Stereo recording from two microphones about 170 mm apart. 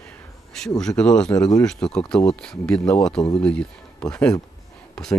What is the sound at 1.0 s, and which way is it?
Speech, 5° left (ahead or behind).